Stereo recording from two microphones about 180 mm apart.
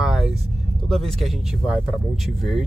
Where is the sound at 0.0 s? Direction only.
Centre (ahead or behind).